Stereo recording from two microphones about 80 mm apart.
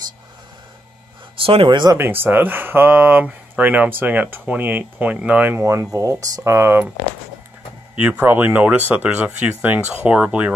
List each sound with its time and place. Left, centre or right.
1.4 s speech: right
2.0 s speech: right
5.6 s speech: right
6.5 s speech: right
7.9 s speech: centre